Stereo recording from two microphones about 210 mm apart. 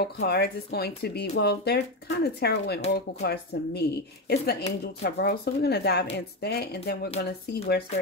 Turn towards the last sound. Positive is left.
turn(degrees=50)  # may be behind; listen again after turning